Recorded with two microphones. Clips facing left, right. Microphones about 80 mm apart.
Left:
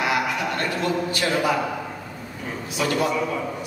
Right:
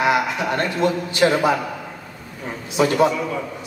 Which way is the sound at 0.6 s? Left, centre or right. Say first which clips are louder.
Right 3 dB; right.